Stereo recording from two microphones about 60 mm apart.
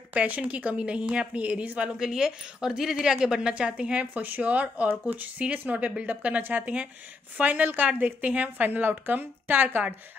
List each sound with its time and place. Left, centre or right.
0.1 s a woman's voice: right
2.0 s a woman's voice: centre; by 9.7 s right